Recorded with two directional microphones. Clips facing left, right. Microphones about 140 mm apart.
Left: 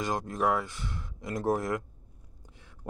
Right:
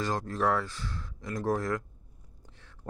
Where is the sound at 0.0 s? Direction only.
15° left (ahead or behind).